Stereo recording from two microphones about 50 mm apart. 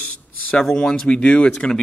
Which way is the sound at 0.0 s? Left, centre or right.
Left.